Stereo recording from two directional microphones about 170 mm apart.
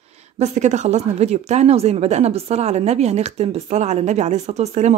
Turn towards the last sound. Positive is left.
turn(degrees=-40)  # may be behind; listen again after turning